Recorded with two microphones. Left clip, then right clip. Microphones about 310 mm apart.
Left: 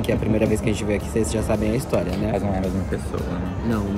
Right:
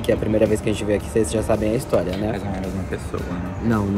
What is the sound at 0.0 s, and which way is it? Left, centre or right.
Speech, centre.